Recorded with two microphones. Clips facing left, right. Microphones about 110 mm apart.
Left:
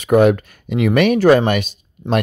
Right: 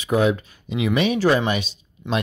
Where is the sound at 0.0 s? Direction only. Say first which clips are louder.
Left 7 dB; 60° left (ahead or behind).